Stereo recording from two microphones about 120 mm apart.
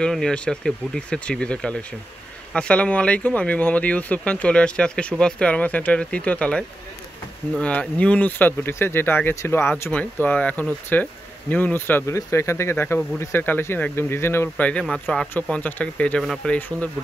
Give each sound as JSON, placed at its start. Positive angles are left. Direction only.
{"t": 0.0, "sound": "speech", "side_deg": 5}
{"t": 16.5, "sound": "speech", "side_deg": 15}